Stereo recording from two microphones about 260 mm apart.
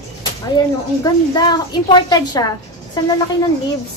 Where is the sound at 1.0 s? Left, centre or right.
Centre.